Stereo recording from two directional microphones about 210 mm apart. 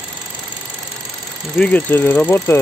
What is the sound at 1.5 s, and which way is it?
Speech, 5° left (ahead or behind).